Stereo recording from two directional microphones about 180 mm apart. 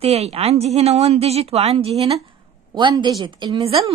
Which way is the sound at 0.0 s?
35° right (ahead or behind).